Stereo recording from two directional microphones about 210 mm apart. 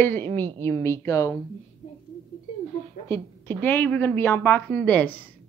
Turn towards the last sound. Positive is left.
turn(degrees=5)  # may be behind; listen again after turning